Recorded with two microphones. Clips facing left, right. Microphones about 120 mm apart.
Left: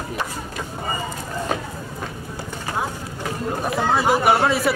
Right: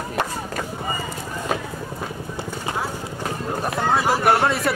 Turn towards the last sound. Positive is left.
turn(degrees=0)  # may be behind; listen again after turning